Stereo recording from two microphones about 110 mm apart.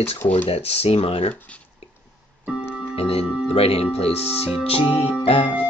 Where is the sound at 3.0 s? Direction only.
65° left (ahead or behind).